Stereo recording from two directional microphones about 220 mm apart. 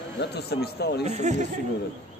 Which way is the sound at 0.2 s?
50° left (ahead or behind).